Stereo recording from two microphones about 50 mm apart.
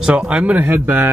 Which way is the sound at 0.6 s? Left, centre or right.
Right.